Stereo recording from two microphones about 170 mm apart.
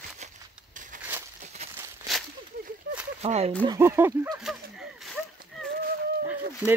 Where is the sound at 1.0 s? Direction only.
10° right (ahead or behind).